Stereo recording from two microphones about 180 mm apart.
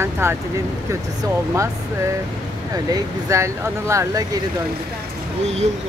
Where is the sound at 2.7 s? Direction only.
20° right (ahead or behind).